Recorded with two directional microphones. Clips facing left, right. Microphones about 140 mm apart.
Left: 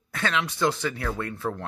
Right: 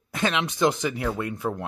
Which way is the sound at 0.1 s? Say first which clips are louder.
Right 2 dB; 20° right (ahead or behind).